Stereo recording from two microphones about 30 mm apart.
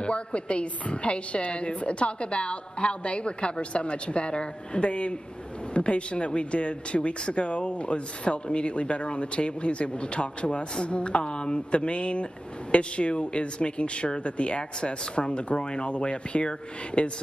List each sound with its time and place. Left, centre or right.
0.0 s speech: left